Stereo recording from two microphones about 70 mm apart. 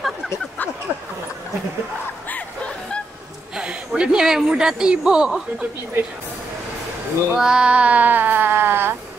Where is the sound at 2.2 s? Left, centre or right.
Centre.